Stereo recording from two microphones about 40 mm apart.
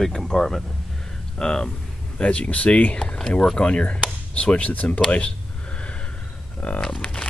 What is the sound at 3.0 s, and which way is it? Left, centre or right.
Speech, centre.